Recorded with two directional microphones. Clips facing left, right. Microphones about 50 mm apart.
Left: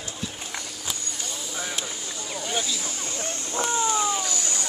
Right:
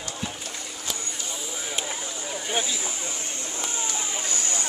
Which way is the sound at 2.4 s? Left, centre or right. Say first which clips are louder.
Right 1 dB; centre.